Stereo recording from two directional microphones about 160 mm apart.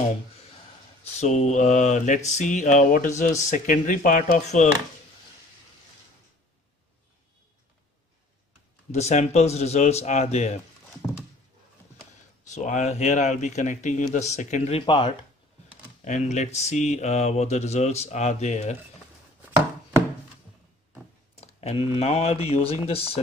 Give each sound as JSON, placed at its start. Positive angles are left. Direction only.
{"t": 1.2, "sound": "mantra", "side_deg": 45}
{"t": 8.9, "sound": "mantra", "side_deg": 45}
{"t": 12.5, "sound": "mantra", "side_deg": 45}
{"t": 14.8, "sound": "speech", "side_deg": 30}
{"t": 16.0, "sound": "mantra", "side_deg": 45}
{"t": 21.4, "sound": "a sound", "side_deg": 40}
{"t": 21.9, "sound": "speech", "side_deg": 40}